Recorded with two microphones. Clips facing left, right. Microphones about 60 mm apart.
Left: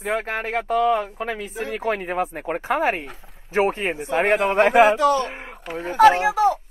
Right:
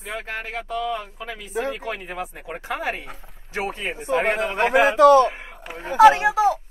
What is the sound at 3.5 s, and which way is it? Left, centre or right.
A man's voice, left.